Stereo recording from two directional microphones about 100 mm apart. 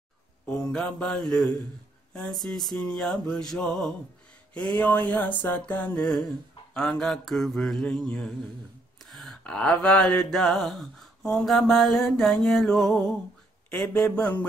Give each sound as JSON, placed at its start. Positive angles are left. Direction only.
{"t": 0.5, "sound": "mantra", "side_deg": 10}
{"t": 5.9, "sound": "mantra", "side_deg": 5}
{"t": 9.1, "sound": "a sound", "side_deg": 0}
{"t": 9.4, "sound": "mantra", "side_deg": 10}